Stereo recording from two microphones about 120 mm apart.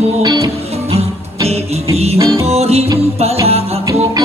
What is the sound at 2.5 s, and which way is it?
Music, 60° right (ahead or behind).